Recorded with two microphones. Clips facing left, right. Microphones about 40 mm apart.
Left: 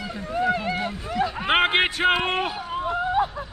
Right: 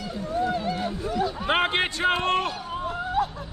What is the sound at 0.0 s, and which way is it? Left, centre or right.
Run, left.